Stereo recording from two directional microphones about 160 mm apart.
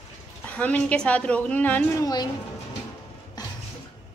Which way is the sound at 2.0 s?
25° left (ahead or behind).